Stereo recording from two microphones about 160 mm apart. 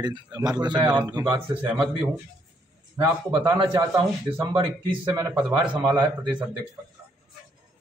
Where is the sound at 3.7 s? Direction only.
25° right (ahead or behind).